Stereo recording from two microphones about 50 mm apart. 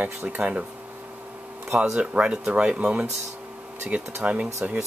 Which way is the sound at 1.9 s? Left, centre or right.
Right.